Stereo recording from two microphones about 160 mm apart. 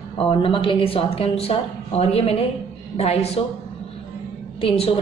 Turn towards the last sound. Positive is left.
turn(degrees=35)  # may be behind; listen again after turning